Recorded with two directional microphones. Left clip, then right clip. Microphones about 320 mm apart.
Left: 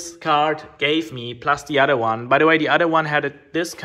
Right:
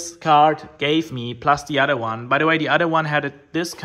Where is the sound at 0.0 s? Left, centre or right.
Centre.